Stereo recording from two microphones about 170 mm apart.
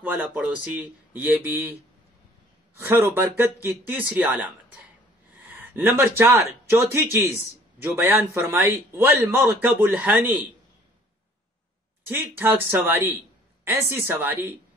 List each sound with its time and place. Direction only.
0.0 s speech: 10° right (ahead or behind)
2.8 s speech: 15° right (ahead or behind)
5.6 s a sound: 10° right (ahead or behind)
5.9 s speech: 15° right (ahead or behind)
12.1 s speech: 10° right (ahead or behind)